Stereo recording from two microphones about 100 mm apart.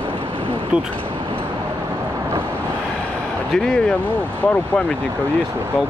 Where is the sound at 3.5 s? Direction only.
10° left (ahead or behind).